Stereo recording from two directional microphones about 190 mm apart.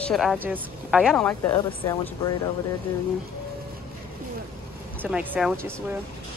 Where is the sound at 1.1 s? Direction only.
10° left (ahead or behind).